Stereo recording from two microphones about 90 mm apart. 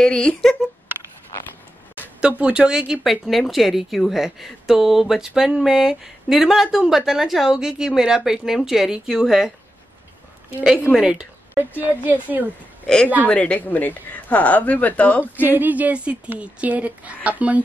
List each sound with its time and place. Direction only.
0.0 s speech: 10° left (ahead or behind)
2.1 s speech: 10° right (ahead or behind)
11.0 s a woman's voice: 10° right (ahead or behind)
12.8 s speech: 10° left (ahead or behind)
15.3 s a woman's voice: 20° right (ahead or behind)